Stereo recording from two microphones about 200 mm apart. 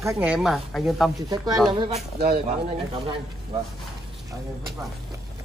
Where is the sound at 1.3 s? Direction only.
20° right (ahead or behind).